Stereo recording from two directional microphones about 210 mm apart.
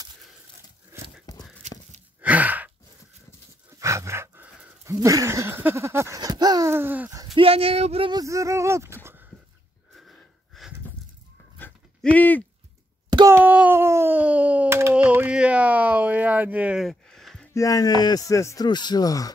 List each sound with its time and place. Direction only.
1.6 s a sound: 30° right (ahead or behind)
2.2 s sigh: 5° right (ahead or behind)
3.8 s a sound: 15° right (ahead or behind)
7.3 s speech: 25° right (ahead or behind)
9.9 s wheeze: centre (ahead or behind)
11.5 s goat: 5° left (ahead or behind)
13.1 s wail: 15° right (ahead or behind); by 17.5 s centre (ahead or behind)
17.6 s speech: 15° left (ahead or behind)